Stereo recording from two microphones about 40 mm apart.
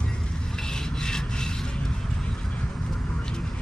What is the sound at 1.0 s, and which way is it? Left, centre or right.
Rub, centre.